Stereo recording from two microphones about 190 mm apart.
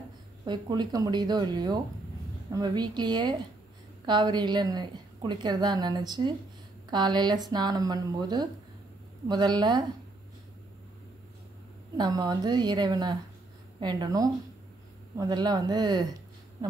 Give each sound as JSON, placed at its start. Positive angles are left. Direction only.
{"t": 0.5, "sound": "a woman's voice", "side_deg": -20}
{"t": 12.0, "sound": "a woman's voice", "side_deg": -20}